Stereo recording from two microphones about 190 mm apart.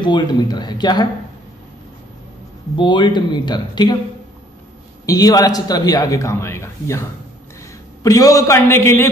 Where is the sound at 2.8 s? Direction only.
25° left (ahead or behind).